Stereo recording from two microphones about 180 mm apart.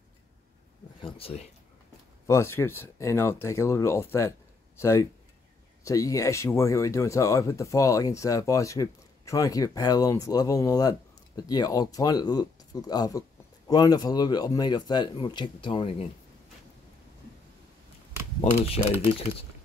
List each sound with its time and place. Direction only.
1.0 s speech: 30° left (ahead or behind)
2.2 s speech: 15° left (ahead or behind); by 16.1 s 30° left (ahead or behind)